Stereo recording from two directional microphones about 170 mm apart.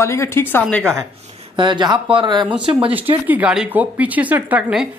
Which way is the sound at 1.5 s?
25° right (ahead or behind).